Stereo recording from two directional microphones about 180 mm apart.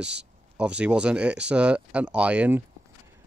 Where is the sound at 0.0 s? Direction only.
75° right (ahead or behind).